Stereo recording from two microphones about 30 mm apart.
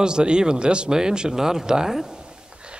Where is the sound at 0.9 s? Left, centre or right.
Right.